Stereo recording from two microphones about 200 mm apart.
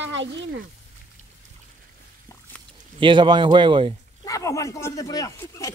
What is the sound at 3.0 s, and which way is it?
Speech, 25° right (ahead or behind).